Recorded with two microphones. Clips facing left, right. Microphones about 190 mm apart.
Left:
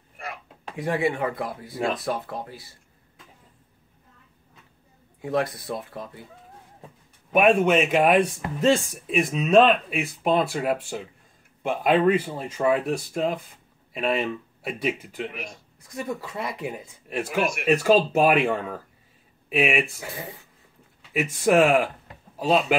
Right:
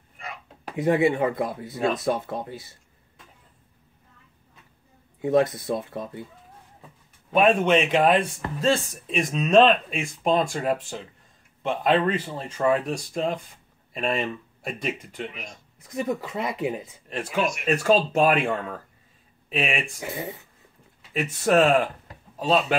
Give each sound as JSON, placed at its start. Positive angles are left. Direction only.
{"t": 0.7, "sound": "speech", "side_deg": -25}
{"t": 5.2, "sound": "speech", "side_deg": -20}
{"t": 7.3, "sound": "speech", "side_deg": 5}
{"t": 9.0, "sound": "speech", "side_deg": 5}
{"t": 15.8, "sound": "speech", "side_deg": -20}
{"t": 17.1, "sound": "speech", "side_deg": 10}
{"t": 20.0, "sound": "speech", "side_deg": -20}
{"t": 21.1, "sound": "speech", "side_deg": 10}